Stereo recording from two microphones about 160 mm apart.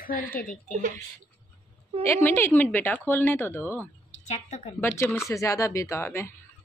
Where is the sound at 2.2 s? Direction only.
10° left (ahead or behind).